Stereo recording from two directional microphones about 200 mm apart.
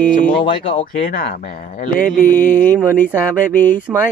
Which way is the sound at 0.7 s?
45° left (ahead or behind).